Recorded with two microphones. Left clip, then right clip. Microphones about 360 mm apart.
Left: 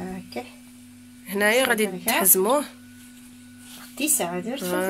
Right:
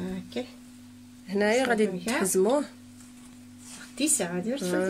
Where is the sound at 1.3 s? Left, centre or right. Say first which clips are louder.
Left 4 dB; centre.